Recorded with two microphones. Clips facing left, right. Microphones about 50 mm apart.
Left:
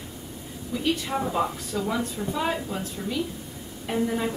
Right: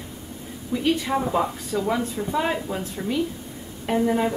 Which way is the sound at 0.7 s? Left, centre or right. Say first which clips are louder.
Right 4 dB; right.